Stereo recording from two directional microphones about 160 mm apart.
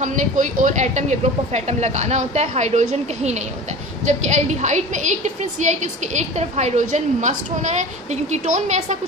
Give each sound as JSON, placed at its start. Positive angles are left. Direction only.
{"t": 0.0, "sound": "a woman's voice", "side_deg": -50}